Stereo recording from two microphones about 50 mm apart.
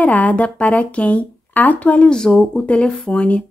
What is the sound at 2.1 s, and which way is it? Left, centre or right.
Speech, centre.